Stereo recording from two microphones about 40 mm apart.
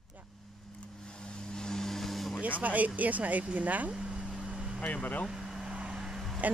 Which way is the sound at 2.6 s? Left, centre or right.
Right.